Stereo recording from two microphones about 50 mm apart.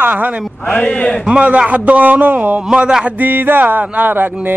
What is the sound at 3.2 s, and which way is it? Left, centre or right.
Music, right.